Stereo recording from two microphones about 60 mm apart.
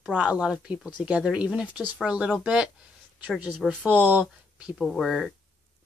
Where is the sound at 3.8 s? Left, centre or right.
Right.